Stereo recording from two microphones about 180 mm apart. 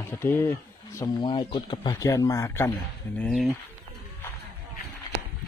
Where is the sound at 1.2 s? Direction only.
25° left (ahead or behind).